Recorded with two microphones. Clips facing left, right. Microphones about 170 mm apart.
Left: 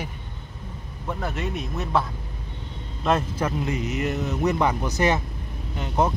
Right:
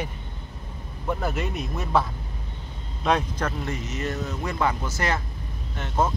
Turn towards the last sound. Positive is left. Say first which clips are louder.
# left 2 dB
turn(degrees=15)  # may be behind; listen again after turning